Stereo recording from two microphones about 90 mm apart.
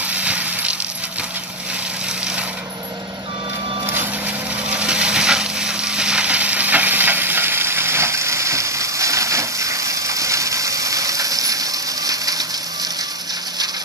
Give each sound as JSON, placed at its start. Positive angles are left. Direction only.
{"t": 0.1, "sound": "a sound", "side_deg": -15}
{"t": 3.8, "sound": "vehicle", "side_deg": -25}
{"t": 4.6, "sound": "crushing", "side_deg": -10}